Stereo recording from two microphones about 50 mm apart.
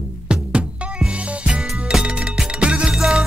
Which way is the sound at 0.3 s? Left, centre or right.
Right.